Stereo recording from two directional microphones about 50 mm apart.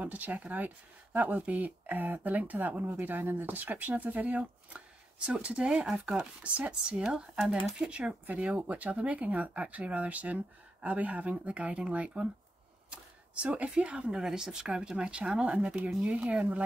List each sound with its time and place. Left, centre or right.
0.0 s speech: right
2.8 s speech: right